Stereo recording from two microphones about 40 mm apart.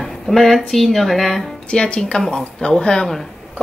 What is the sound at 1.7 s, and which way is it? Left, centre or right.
Speech, left.